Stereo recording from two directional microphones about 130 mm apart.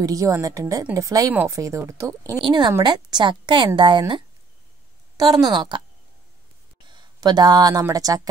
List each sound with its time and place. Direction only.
0.0 s speech: 25° right (ahead or behind)
2.4 s a woman's voice: 35° right (ahead or behind)
5.1 s a woman's voice: 30° right (ahead or behind)
6.9 s a sound: 35° right (ahead or behind)
7.8 s speech: 25° right (ahead or behind)